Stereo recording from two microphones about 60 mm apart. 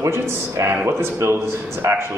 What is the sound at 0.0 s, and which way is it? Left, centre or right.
A man's voice, right.